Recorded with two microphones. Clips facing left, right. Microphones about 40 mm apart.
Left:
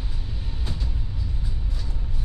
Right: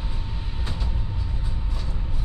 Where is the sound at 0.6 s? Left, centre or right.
Right.